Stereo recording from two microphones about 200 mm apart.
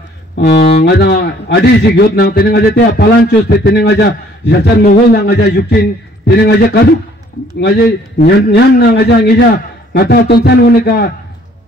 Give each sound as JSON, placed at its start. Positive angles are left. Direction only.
{"t": 0.4, "sound": "a man's voice", "side_deg": 50}
{"t": 8.2, "sound": "a man's voice", "side_deg": 55}